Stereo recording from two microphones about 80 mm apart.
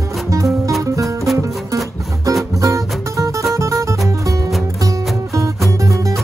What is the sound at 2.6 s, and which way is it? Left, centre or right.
Music, right.